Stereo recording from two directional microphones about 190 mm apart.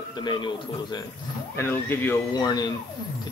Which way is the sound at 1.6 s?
10° left (ahead or behind).